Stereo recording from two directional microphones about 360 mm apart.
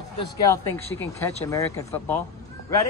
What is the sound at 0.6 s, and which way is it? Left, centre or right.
Speech, left.